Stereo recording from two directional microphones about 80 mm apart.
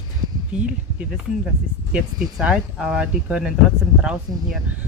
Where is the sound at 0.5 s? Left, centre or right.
Centre.